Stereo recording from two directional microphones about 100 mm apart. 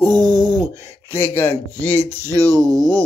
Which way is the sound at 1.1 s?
20° left (ahead or behind).